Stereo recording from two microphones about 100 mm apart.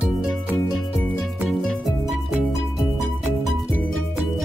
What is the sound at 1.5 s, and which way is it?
Music, centre (ahead or behind).